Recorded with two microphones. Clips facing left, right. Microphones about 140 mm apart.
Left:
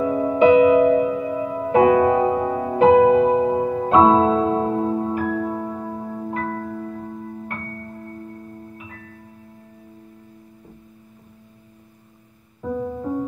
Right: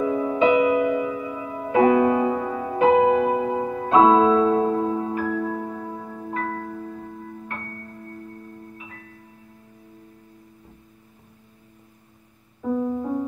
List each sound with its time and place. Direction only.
0.0 s music: 40° left (ahead or behind)